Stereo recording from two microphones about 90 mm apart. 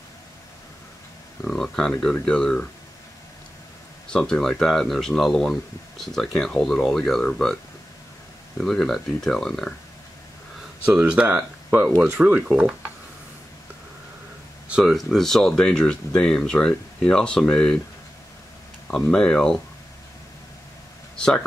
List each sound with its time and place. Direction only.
1.4 s speech: 5° left (ahead or behind)
4.1 s speech: 5° left (ahead or behind)
8.5 s speech: 5° left (ahead or behind)
11.1 s speech: 15° right (ahead or behind)
14.7 s speech: 5° right (ahead or behind)
18.9 s speech: 10° left (ahead or behind)
21.2 s speech: 10° left (ahead or behind)